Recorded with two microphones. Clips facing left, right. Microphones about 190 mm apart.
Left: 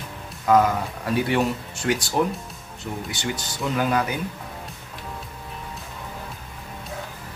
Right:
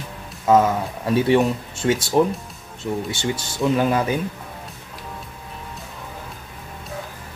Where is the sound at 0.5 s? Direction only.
25° right (ahead or behind).